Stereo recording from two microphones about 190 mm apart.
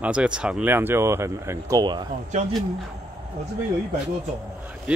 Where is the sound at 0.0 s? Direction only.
5° right (ahead or behind); by 2.0 s 25° right (ahead or behind).